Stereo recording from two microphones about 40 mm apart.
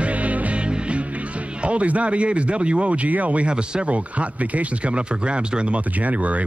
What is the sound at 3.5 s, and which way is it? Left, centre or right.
Speech, right.